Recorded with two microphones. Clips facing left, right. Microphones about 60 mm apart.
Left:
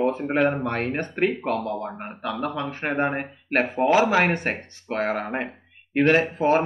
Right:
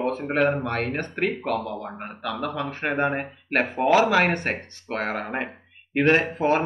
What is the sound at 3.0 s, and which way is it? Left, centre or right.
Speech, centre.